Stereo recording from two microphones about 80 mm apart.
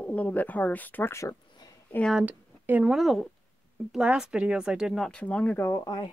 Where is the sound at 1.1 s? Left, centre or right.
Left.